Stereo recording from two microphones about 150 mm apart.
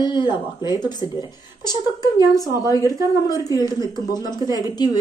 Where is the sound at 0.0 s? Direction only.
30° left (ahead or behind).